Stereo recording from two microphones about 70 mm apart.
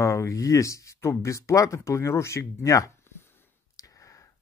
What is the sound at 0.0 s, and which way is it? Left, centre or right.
Speech, left.